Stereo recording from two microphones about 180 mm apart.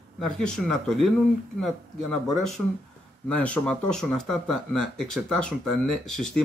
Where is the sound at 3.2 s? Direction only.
5° left (ahead or behind).